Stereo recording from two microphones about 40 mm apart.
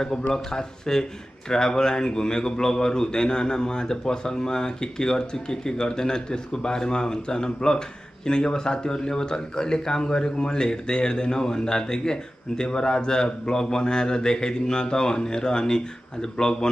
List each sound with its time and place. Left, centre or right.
0.3 s a man's voice: centre